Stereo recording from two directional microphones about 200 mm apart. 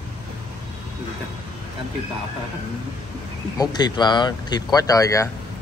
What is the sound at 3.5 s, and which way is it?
Speech, 20° left (ahead or behind).